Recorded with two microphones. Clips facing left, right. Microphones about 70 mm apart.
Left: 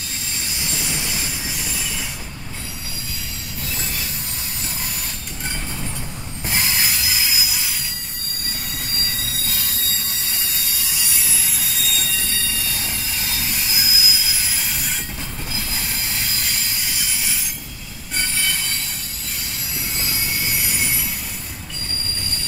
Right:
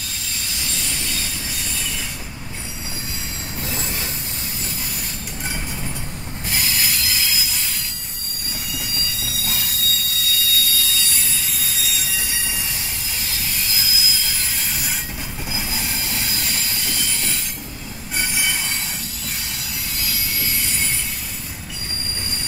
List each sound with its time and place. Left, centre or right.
0.7 s train: centre
6.5 s a sound: left
8.7 s squeal: left
9.6 s a sound: left
11.1 s train wheels squealing: centre
13.7 s train wheels squealing: centre
14.2 s train wheels squealing: centre
15.5 s train: centre
17.0 s train wheels squealing: centre
18.1 s train: centre
20.0 s vehicle: left
20.6 s train: centre